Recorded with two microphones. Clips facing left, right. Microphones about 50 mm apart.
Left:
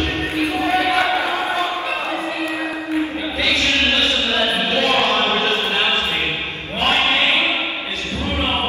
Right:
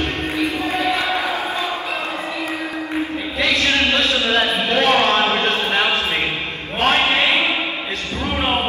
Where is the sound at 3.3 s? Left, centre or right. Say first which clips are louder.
Right 1 dB; right.